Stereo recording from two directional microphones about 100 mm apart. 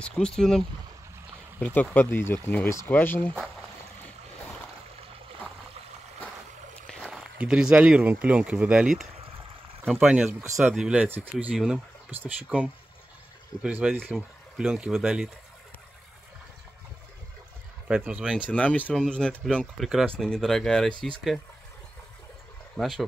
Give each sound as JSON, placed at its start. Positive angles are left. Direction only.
{"t": 0.0, "sound": "speech", "side_deg": 10}
{"t": 1.7, "sound": "speech", "side_deg": 20}
{"t": 7.1, "sound": "speech", "side_deg": -5}
{"t": 11.5, "sound": "speech", "side_deg": -5}
{"t": 14.1, "sound": "speech", "side_deg": -5}
{"t": 17.8, "sound": "speech", "side_deg": -15}
{"t": 18.5, "sound": "speech", "side_deg": 15}
{"t": 22.8, "sound": "speech", "side_deg": 0}